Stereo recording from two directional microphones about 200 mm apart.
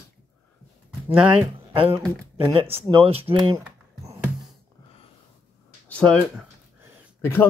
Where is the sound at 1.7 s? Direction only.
25° right (ahead or behind).